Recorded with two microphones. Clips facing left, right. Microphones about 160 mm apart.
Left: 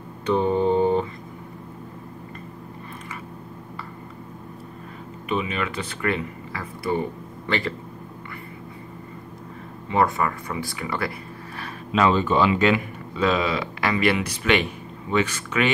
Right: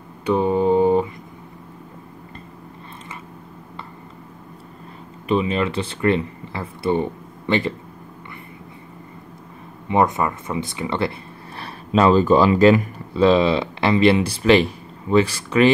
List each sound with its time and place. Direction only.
0.2 s mantra: 10° right (ahead or behind)
5.3 s speech: 30° right (ahead or behind)
9.8 s speech: 20° right (ahead or behind)